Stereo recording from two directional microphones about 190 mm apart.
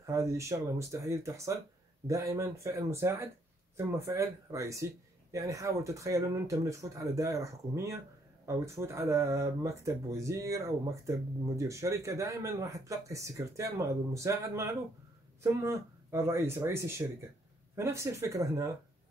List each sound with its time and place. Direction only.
0.0 s speech: 15° right (ahead or behind)